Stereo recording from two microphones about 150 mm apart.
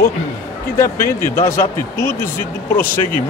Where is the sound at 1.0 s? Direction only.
15° left (ahead or behind).